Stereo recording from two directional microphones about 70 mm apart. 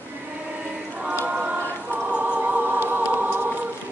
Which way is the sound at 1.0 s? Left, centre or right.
Right.